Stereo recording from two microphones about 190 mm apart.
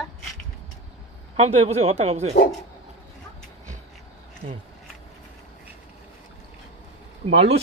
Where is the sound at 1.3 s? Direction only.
35° right (ahead or behind).